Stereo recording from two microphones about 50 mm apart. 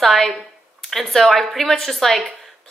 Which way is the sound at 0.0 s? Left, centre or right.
Centre.